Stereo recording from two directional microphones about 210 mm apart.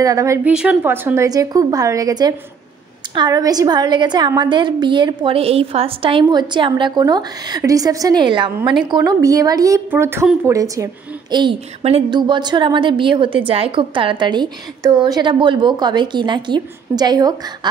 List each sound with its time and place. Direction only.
0.0 s a woman's voice: 15° right (ahead or behind)
0.5 s a woman's voice: 5° right (ahead or behind)